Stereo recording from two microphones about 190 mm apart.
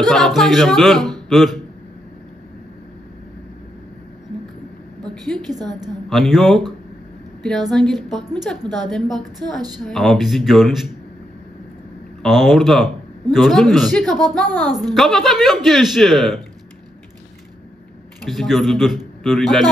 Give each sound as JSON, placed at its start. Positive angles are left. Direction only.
{"t": 0.0, "sound": "speech", "side_deg": 0}
{"t": 5.6, "sound": "a woman's voice", "side_deg": -20}
{"t": 6.0, "sound": "speech", "side_deg": 0}
{"t": 12.2, "sound": "speech", "side_deg": 0}
{"t": 18.2, "sound": "speech", "side_deg": 0}